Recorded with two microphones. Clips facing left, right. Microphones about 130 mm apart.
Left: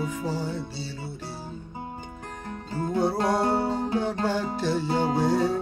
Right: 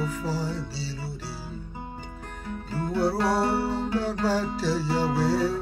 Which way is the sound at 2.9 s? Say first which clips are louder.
Even; 20° left (ahead or behind).